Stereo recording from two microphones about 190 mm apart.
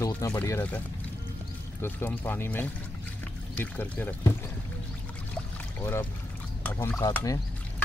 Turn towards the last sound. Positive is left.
turn(degrees=20)  # may be behind; listen again after turning